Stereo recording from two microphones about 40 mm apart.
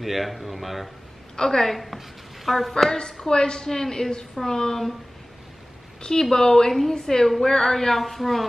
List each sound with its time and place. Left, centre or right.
0.0 s speech: centre
1.3 s speech: centre
1.8 s a woman's voice: centre
3.0 s a woman's voice: centre
5.9 s a woman's voice: centre